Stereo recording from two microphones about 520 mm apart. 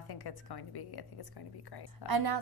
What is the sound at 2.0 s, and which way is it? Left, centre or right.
Speech, right.